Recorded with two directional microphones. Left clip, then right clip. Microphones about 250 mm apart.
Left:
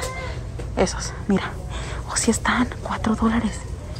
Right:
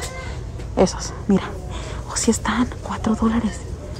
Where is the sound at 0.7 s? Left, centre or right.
Centre.